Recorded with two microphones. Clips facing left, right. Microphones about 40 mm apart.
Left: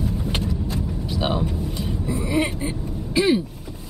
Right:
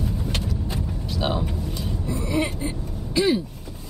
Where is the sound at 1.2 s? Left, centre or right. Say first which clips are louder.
Left 2 dB; centre.